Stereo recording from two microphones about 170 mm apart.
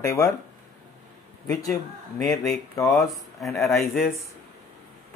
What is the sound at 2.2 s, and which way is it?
Speech, centre (ahead or behind).